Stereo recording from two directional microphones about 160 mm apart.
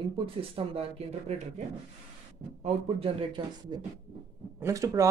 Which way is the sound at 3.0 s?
35° right (ahead or behind).